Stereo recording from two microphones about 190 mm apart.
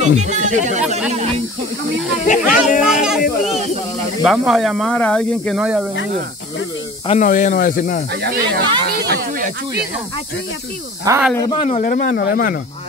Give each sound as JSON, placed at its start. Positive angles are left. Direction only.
{"t": 0.0, "sound": "speech", "side_deg": -40}
{"t": 2.2, "sound": "speech", "side_deg": 40}
{"t": 2.8, "sound": "speech", "side_deg": 0}
{"t": 4.2, "sound": "speech", "side_deg": 0}
{"t": 5.6, "sound": "speech", "side_deg": -5}
{"t": 7.1, "sound": "speech", "side_deg": 40}
{"t": 8.1, "sound": "speech", "side_deg": -60}
{"t": 11.1, "sound": "speech", "side_deg": -20}
{"t": 11.5, "sound": "speech", "side_deg": 30}
{"t": 11.8, "sound": "speech", "side_deg": 45}
{"t": 12.2, "sound": "speech", "side_deg": 55}